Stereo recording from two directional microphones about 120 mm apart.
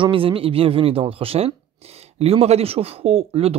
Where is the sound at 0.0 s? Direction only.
50° right (ahead or behind).